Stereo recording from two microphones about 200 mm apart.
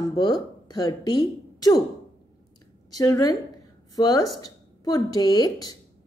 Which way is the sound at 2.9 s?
15° left (ahead or behind).